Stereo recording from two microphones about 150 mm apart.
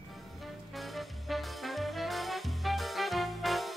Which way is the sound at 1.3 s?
Centre (ahead or behind).